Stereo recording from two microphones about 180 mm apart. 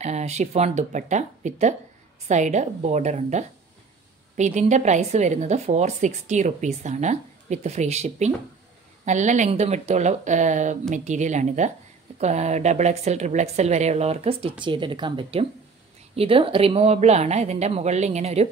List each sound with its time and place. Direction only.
0.0 s a woman's voice: 40° right (ahead or behind)